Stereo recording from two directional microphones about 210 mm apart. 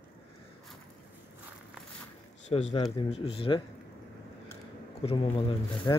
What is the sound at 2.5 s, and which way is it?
Speech, 25° left (ahead or behind).